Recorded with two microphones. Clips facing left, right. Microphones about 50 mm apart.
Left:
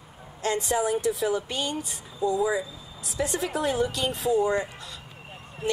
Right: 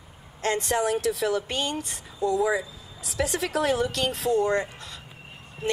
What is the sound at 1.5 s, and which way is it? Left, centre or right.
Speech, right.